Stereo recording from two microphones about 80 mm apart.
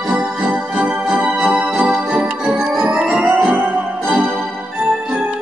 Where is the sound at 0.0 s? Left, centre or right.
Centre.